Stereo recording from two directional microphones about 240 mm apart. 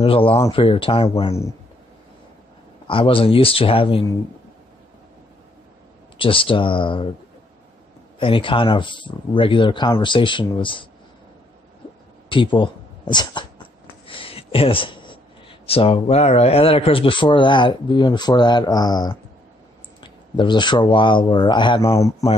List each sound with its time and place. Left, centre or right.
0.0 s speech: left
2.9 s speech: left
6.1 s speech: left
8.2 s speech: left
12.3 s speech: left